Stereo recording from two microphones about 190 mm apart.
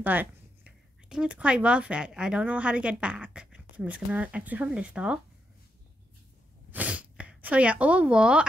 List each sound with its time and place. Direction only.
0.0 s speech: 10° right (ahead or behind)
6.7 s speech: 10° right (ahead or behind)